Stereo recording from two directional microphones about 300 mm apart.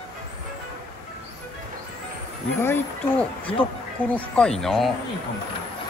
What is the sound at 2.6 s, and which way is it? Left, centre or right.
Speech, centre.